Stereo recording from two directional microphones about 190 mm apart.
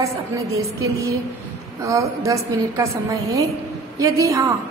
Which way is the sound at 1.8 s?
15° right (ahead or behind).